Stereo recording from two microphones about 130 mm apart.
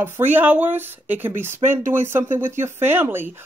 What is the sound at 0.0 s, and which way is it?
Speech, 15° right (ahead or behind).